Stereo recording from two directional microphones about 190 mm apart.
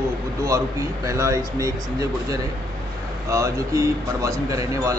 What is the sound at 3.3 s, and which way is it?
Speech, 15° right (ahead or behind).